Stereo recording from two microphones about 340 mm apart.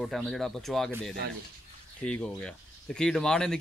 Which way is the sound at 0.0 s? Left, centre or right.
Centre.